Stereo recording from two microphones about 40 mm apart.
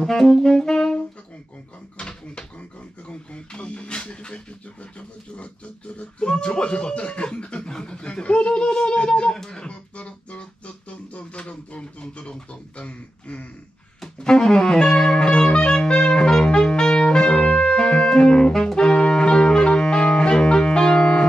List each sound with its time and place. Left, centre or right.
0.0 s saxophone: centre
2.0 s speech: left
5.9 s speech: left
8.6 s music: left
9.3 s a sound: centre
9.7 s music: left
10.9 s a sound: left
14.0 s saxophone: centre
17.7 s music: centre